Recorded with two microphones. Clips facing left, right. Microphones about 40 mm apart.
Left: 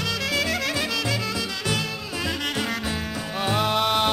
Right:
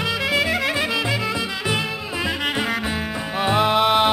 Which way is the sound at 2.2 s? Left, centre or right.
Centre.